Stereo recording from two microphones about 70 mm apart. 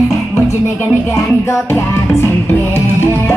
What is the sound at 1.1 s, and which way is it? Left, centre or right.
Music, left.